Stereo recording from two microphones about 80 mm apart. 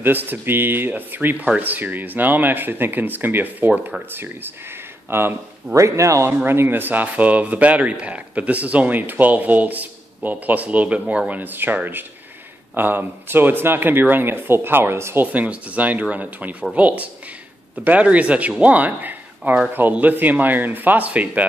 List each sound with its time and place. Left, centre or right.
0.0 s speech: right
6.4 s speech: right
15.3 s speech: centre